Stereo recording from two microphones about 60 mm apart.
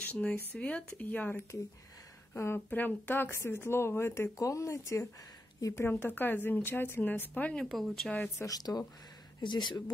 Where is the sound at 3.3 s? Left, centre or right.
Left.